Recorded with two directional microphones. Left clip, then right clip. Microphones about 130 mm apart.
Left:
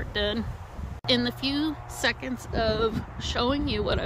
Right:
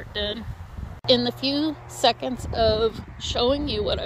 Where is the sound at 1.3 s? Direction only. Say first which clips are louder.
Right 3 dB; 5° left (ahead or behind).